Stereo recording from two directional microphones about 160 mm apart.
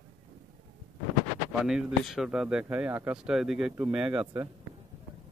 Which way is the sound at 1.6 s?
Centre (ahead or behind).